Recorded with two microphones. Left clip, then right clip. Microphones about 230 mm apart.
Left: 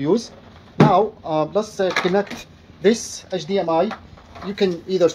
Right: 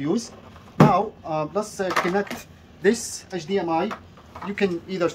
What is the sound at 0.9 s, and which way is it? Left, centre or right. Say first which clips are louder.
Speech: left 5 dB; left.